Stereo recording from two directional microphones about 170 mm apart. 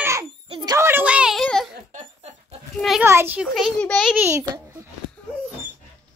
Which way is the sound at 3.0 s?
15° right (ahead or behind).